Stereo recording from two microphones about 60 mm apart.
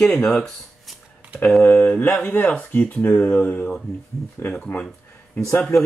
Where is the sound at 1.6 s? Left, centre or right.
Left.